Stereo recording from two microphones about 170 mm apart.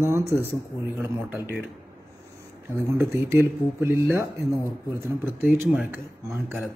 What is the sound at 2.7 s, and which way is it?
Speech, 15° right (ahead or behind).